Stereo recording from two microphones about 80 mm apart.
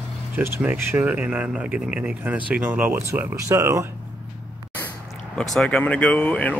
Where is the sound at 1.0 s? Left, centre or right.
Centre; by 3.8 s right.